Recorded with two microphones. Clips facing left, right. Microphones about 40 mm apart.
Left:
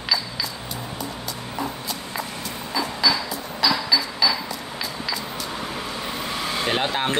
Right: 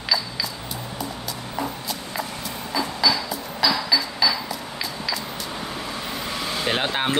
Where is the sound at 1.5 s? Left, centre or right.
Centre.